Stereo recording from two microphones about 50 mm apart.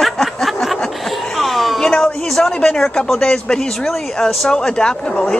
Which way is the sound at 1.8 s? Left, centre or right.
Centre.